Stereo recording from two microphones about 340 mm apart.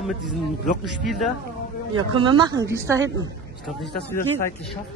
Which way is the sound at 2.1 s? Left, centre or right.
Centre.